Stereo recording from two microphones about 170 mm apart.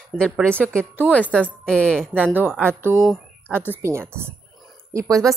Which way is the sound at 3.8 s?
15° right (ahead or behind).